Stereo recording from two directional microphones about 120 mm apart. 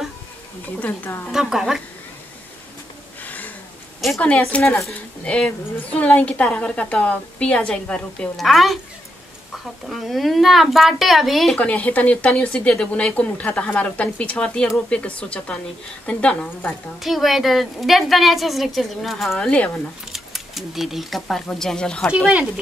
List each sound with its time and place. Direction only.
0.7 s speech: 15° left (ahead or behind)
1.3 s a woman's voice: 5° right (ahead or behind)
3.3 s a sound: 15° left (ahead or behind)
4.0 s a woman's voice: centre (ahead or behind)
4.3 s speech: 10° left (ahead or behind)
9.8 s a woman's voice: centre (ahead or behind)
22.1 s speech: 10° right (ahead or behind)